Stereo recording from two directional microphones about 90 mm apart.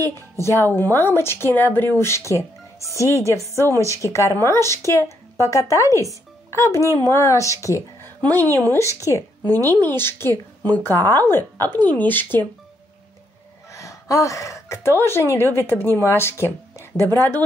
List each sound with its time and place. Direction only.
0.0 s a woman's voice: 30° left (ahead or behind)
8.0 s a woman's voice: 20° left (ahead or behind)
8.8 s a woman's voice: 35° left (ahead or behind)
13.7 s speech: 35° left (ahead or behind)